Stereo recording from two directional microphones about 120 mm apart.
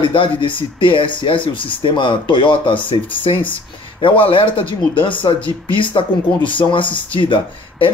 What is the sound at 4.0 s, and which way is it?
Speech, 45° left (ahead or behind).